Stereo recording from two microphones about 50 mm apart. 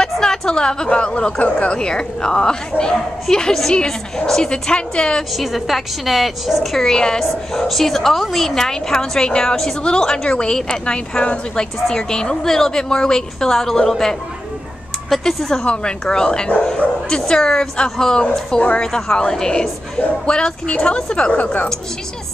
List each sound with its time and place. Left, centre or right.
0.0 s a woman's voice: centre
5.3 s a woman's voice: centre
6.9 s a woman's voice: centre
7.2 s a woman's voice: centre
15.6 s a woman's voice: centre
17.1 s a woman's voice: centre
18.6 s a woman's voice: left
18.9 s a woman's voice: centre; by 21.6 s left